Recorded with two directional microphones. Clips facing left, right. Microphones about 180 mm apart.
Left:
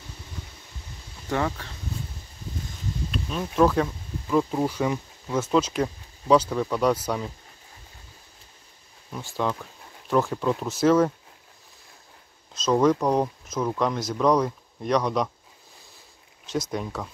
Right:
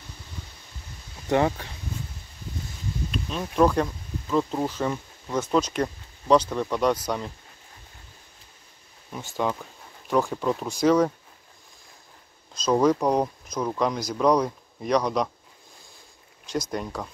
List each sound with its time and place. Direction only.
1.3 s speech: 20° right (ahead or behind)
3.1 s speech: centre (ahead or behind)
9.1 s speech: 5° right (ahead or behind)
12.5 s speech: centre (ahead or behind)
16.7 s speech: centre (ahead or behind)